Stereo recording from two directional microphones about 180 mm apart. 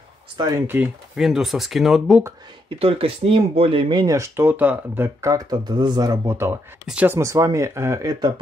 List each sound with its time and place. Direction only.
0.4 s speech: 20° right (ahead or behind)
0.7 s speech: 5° right (ahead or behind)
2.8 s speech: 30° right (ahead or behind)